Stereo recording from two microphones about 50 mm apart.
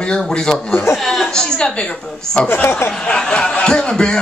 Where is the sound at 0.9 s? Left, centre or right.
Centre.